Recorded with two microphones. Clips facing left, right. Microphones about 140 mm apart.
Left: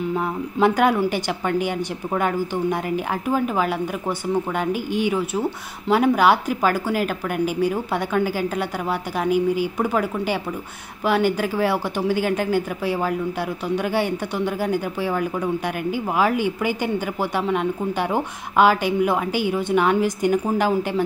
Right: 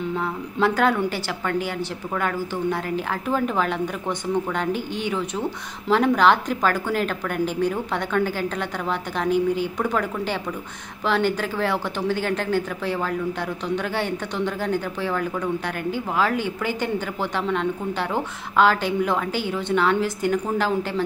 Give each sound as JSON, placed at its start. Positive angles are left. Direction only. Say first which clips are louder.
{"t": 0.1, "sound": "speech", "louder": "left 3 dB", "side_deg": 15}